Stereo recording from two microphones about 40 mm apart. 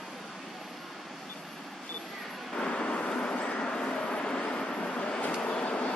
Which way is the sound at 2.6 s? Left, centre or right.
Left.